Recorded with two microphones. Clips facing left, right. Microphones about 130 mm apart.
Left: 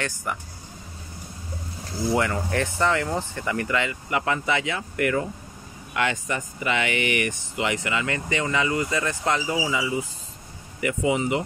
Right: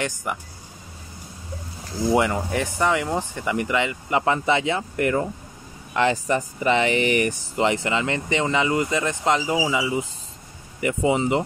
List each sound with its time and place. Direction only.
0.0 s speech: 15° right (ahead or behind)
2.1 s speech: 15° right (ahead or behind)